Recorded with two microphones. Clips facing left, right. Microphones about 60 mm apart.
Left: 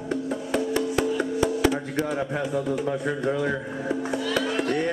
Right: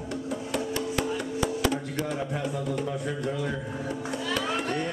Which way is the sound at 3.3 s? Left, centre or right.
Left.